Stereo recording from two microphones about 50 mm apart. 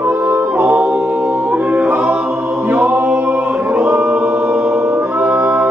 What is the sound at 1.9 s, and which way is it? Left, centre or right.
A capella, centre.